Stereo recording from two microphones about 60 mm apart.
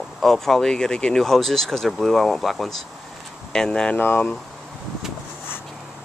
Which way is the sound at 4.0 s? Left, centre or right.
Left.